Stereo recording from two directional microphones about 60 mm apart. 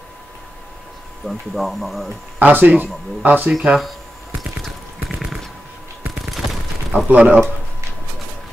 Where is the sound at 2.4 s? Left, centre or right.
Right.